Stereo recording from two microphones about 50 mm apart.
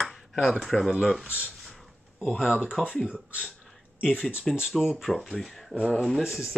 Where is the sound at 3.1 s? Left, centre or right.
Right.